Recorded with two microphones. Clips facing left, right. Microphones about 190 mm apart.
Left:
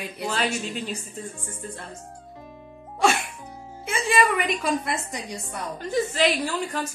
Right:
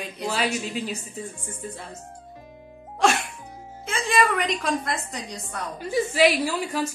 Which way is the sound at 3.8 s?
5° left (ahead or behind).